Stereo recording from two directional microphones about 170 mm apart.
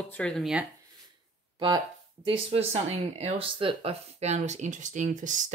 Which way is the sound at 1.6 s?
25° right (ahead or behind).